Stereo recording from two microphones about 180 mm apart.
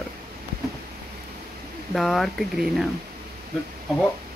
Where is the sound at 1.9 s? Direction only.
Centre (ahead or behind).